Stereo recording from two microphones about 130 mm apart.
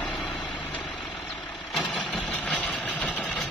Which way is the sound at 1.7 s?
10° left (ahead or behind).